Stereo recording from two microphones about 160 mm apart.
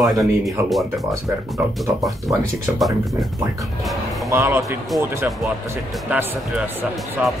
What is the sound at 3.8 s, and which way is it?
Music, centre (ahead or behind).